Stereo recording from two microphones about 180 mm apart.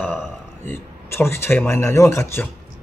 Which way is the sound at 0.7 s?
15° left (ahead or behind).